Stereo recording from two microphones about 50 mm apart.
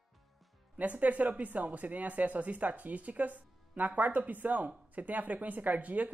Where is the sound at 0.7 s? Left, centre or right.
Right.